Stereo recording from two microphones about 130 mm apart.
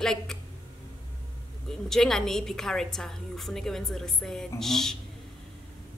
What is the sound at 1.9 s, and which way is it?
A woman's voice, 5° left (ahead or behind).